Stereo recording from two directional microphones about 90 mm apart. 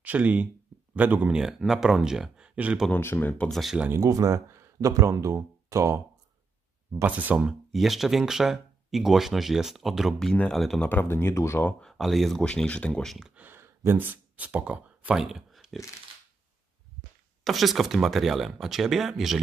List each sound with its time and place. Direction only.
0.0 s speech: 15° right (ahead or behind)
1.3 s speech: 5° right (ahead or behind)
3.0 s speech: 25° left (ahead or behind)
3.4 s speech: centre (ahead or behind)
3.9 s speech: 40° right (ahead or behind)
7.0 s speech: 20° right (ahead or behind)
7.7 s speech: centre (ahead or behind)
10.1 s speech: 10° left (ahead or behind)
10.9 s speech: 25° left (ahead or behind)
11.8 s speech: centre (ahead or behind)
13.3 s speech: 20° right (ahead or behind); by 15.8 s 5° right (ahead or behind)
17.4 s speech: centre (ahead or behind)